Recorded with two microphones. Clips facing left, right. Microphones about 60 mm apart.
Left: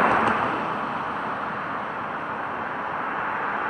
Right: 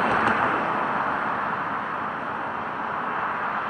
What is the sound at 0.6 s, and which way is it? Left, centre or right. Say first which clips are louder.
Vehicle: right 2 dB; right.